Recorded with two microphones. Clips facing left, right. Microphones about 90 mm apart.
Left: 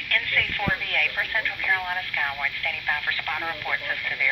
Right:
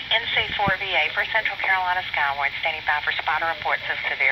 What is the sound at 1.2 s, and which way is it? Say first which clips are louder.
Speech: right 3 dB; 55° right (ahead or behind).